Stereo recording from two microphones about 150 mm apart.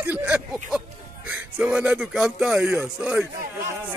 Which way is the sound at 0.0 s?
10° right (ahead or behind).